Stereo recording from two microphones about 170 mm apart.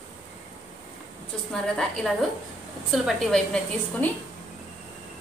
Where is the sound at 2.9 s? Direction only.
Centre (ahead or behind).